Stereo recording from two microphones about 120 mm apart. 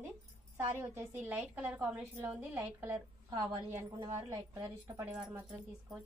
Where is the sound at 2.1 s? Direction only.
20° right (ahead or behind).